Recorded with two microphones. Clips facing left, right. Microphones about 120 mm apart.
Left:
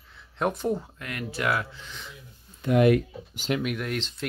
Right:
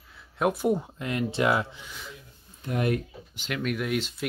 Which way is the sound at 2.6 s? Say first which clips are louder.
Left 7 dB; 90° left.